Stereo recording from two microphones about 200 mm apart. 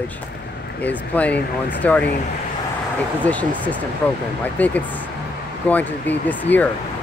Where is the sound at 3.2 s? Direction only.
5° left (ahead or behind).